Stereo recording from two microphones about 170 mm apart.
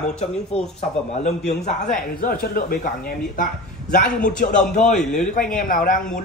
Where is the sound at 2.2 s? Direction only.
60° left (ahead or behind).